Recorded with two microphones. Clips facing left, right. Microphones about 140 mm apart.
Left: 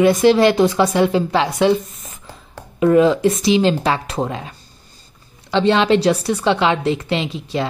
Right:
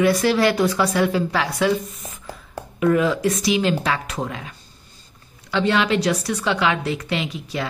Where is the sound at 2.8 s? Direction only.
25° left (ahead or behind).